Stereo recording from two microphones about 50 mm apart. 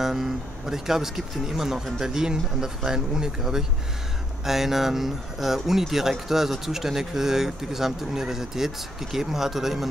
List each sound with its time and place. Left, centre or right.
0.0 s speech: centre